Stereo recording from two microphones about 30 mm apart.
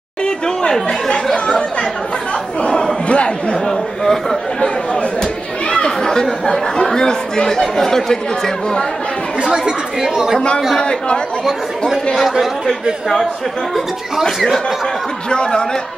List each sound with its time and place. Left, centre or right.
0.2 s chatter: left
1.3 s speech: left
2.7 s chatter: centre
3.1 s speech: left
3.5 s a man's voice: centre
5.2 s chatter: left
5.9 s chatter: centre
6.4 s speech: left
9.4 s speech: right
10.8 s speech: left
12.2 s speech: centre
15.2 s speech: left